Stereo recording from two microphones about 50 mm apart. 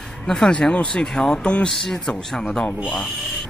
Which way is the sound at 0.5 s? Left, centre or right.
Centre.